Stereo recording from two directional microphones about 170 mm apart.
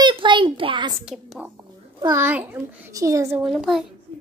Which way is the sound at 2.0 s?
15° right (ahead or behind).